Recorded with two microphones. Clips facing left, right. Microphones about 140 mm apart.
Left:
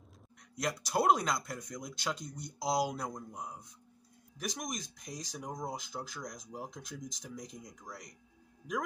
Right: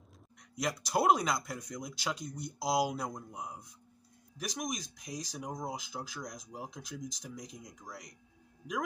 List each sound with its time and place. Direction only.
0.4 s speech: centre (ahead or behind)